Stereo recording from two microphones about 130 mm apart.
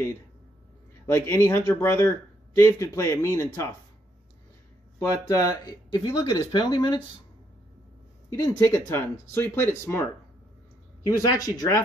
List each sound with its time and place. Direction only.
1.0 s speech: 20° left (ahead or behind)
4.9 s speech: 25° left (ahead or behind)
8.3 s speech: 25° left (ahead or behind)
11.1 s speech: 25° left (ahead or behind)